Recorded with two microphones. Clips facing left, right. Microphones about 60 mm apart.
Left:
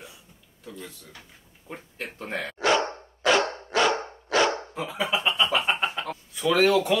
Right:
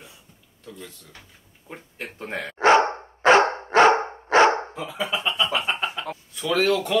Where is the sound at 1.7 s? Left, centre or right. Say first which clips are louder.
Even; centre.